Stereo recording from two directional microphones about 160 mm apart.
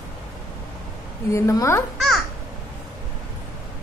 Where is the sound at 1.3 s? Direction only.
20° left (ahead or behind).